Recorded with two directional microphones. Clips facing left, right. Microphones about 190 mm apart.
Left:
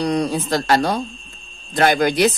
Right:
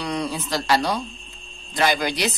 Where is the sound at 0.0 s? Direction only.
45° left (ahead or behind).